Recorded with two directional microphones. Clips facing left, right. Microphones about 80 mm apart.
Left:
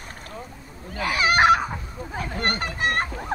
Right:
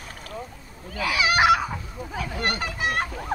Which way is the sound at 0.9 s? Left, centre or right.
Left.